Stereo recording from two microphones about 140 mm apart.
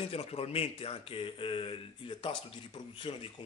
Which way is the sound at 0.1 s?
45° left (ahead or behind).